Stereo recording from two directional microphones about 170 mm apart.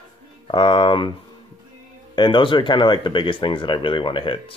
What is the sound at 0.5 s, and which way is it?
Speech, 30° left (ahead or behind).